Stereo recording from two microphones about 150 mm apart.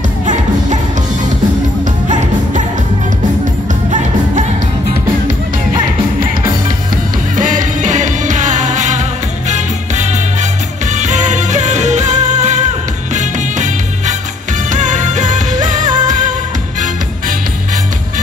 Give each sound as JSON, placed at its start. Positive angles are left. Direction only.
{"t": 2.0, "sound": "music", "side_deg": -55}
{"t": 7.3, "sound": "music", "side_deg": -60}
{"t": 10.9, "sound": "music", "side_deg": -50}